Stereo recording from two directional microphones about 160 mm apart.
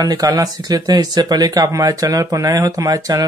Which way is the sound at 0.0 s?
25° right (ahead or behind).